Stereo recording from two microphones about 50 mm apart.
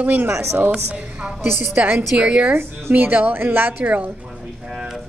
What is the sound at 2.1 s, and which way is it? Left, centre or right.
Speech, right.